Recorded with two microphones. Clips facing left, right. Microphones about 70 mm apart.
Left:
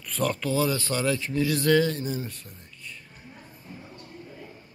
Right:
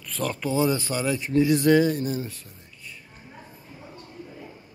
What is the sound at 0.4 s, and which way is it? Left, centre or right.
Speech, right.